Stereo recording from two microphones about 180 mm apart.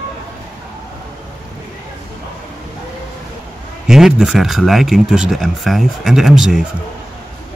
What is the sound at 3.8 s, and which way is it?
Speech, centre (ahead or behind).